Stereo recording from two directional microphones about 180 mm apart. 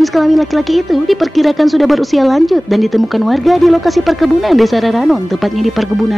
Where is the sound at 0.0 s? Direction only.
Centre (ahead or behind).